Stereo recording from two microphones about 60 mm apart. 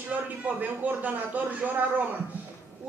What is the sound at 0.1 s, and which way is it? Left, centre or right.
Speech, right.